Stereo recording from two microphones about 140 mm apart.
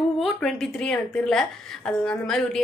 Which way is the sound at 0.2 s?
Centre (ahead or behind).